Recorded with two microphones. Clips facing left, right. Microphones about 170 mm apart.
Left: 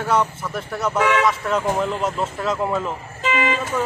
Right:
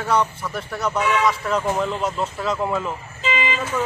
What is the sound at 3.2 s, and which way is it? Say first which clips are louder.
Speech: left 3 dB; 50° left (ahead or behind).